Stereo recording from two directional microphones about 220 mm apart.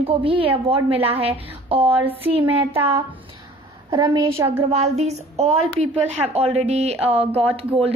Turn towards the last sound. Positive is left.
turn(degrees=-25)  # may be behind; listen again after turning